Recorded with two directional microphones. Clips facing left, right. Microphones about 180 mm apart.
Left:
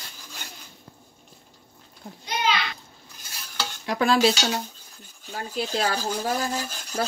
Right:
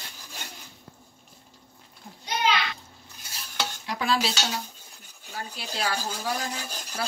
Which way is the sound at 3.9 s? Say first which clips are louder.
Left 7 dB; 50° left (ahead or behind).